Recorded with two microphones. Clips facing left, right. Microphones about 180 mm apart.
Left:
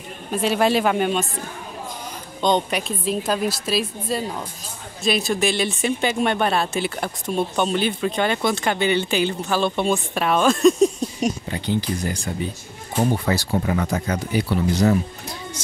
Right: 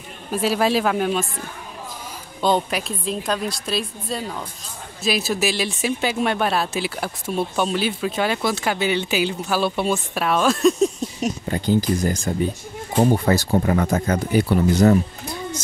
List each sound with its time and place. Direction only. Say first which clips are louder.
0.3 s speech: even; centre (ahead or behind)
2.4 s speech: even; 5° right (ahead or behind)
11.4 s speech: right 4 dB; 45° right (ahead or behind)